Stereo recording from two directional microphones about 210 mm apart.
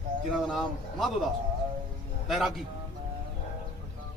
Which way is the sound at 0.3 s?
Centre (ahead or behind).